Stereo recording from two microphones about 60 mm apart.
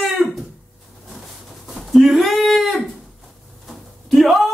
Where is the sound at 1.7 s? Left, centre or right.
Centre.